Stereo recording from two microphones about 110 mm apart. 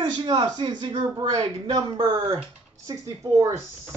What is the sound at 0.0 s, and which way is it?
Speech, 50° right (ahead or behind).